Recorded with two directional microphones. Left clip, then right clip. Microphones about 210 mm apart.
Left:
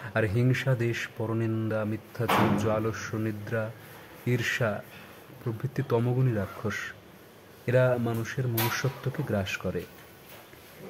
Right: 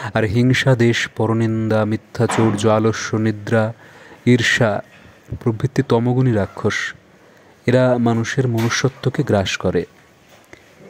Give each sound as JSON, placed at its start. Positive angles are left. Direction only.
{"t": 0.0, "sound": "speech", "side_deg": -35}